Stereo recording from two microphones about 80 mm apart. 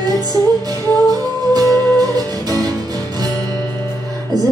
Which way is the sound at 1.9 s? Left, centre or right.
Right.